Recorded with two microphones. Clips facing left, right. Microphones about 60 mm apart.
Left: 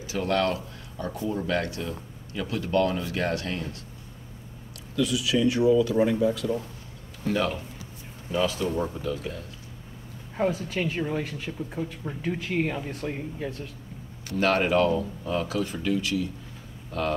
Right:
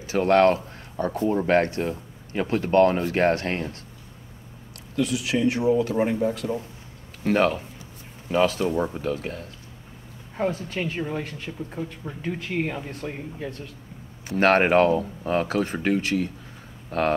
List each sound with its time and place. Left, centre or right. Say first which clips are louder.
0.0 s speech: right 8 dB; right
4.9 s speech: even; right
10.3 s speech: even; centre
14.3 s speech: right 5 dB; right